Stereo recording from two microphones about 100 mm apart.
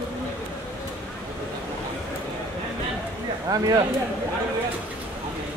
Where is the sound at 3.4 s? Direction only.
40° right (ahead or behind).